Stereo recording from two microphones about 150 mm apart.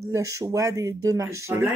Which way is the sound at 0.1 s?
20° right (ahead or behind).